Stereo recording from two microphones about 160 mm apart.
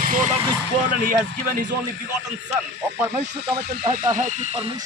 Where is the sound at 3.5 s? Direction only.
65° right (ahead or behind).